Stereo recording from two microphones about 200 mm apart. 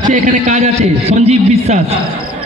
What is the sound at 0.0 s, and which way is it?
A man's voice, 40° right (ahead or behind).